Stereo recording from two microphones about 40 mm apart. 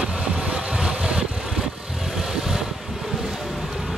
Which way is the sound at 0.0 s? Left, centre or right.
Centre.